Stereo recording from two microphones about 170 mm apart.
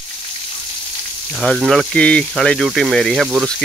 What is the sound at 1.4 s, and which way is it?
Speech, centre (ahead or behind).